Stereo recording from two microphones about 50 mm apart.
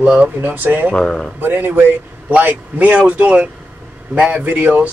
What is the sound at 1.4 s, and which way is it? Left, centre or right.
Speech, right.